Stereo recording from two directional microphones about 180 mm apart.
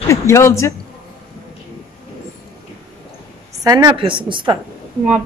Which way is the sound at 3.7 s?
20° right (ahead or behind).